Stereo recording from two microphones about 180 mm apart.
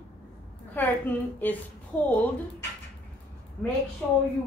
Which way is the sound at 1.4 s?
10° left (ahead or behind).